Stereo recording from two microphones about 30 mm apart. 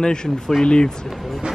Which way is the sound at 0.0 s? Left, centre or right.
Left.